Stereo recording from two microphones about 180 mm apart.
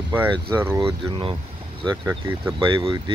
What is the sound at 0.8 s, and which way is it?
Speech, 30° right (ahead or behind).